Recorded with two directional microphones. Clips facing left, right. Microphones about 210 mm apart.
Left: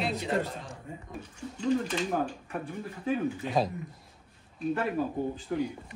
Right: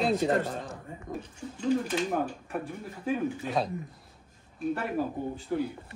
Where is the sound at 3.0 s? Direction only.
Centre (ahead or behind).